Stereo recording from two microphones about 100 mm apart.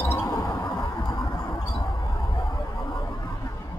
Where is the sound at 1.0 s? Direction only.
45° left (ahead or behind).